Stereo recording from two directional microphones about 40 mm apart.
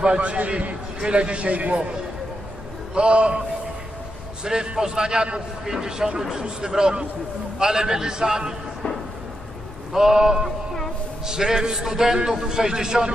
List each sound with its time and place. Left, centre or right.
0.0 s a man's voice: right
2.9 s a man's voice: right
4.5 s a man's voice: centre
9.9 s a man's voice: centre